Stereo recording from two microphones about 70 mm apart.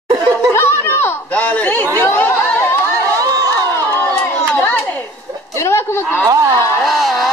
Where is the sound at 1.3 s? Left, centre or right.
Left.